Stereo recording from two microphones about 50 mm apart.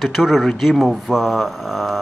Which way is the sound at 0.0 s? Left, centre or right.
Centre.